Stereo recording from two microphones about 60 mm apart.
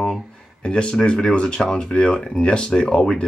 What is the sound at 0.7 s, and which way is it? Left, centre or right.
Speech, centre.